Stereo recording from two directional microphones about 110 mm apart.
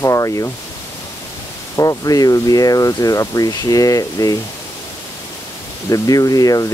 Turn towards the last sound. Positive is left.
turn(degrees=35)  # may be behind; listen again after turning